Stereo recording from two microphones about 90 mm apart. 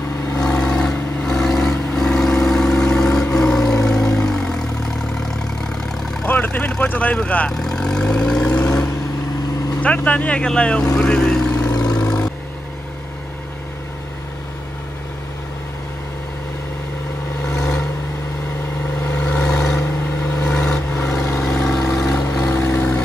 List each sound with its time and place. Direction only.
0.4 s vehicle: 10° left (ahead or behind)
6.2 s vehicle: 20° left (ahead or behind)
6.8 s speech: 15° left (ahead or behind)
9.8 s speech: 15° left (ahead or behind)
11.7 s vehicle: 45° left (ahead or behind)
19.0 s vehicle: 20° left (ahead or behind)
22.5 s vehicle: 20° left (ahead or behind)